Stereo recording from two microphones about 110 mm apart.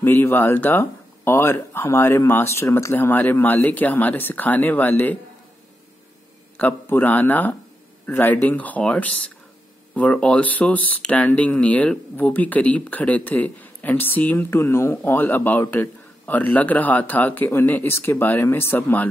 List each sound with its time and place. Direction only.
0.0 s speech: 20° left (ahead or behind)
6.5 s speech: 15° left (ahead or behind)